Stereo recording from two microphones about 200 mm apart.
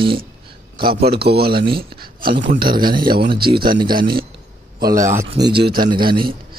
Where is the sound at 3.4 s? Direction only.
50° right (ahead or behind).